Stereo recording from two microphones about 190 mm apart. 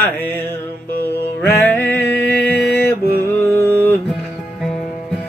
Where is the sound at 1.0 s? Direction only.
10° left (ahead or behind).